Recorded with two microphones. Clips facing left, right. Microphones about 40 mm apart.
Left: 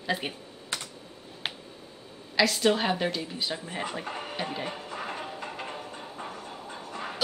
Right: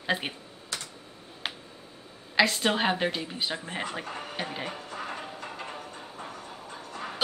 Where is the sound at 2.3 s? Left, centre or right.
Right.